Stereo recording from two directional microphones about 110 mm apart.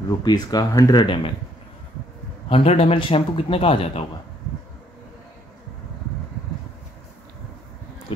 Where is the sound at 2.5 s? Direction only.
70° left (ahead or behind).